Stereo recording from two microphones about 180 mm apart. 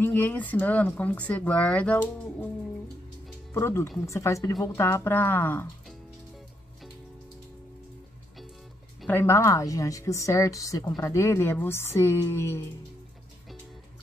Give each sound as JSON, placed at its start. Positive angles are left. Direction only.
{"t": 0.0, "sound": "speech", "side_deg": 10}
{"t": 3.5, "sound": "speech", "side_deg": 15}
{"t": 9.0, "sound": "speech", "side_deg": 10}